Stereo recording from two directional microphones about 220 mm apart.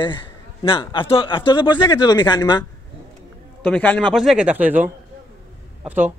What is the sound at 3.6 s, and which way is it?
A man's voice, 5° left (ahead or behind).